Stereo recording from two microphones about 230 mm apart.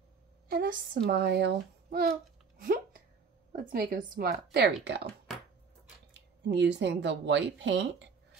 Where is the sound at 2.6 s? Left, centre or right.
Right.